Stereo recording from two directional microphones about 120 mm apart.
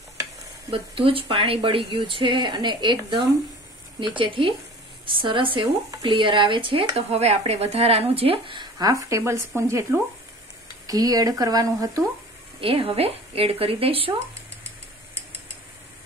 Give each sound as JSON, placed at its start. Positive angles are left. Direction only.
{"t": 0.7, "sound": "speech", "side_deg": -50}
{"t": 4.0, "sound": "speech", "side_deg": -45}
{"t": 8.7, "sound": "speech", "side_deg": -30}
{"t": 12.5, "sound": "speech", "side_deg": -50}